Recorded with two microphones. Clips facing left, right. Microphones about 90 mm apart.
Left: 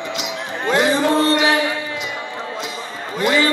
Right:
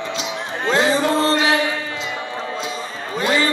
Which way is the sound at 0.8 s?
20° left (ahead or behind).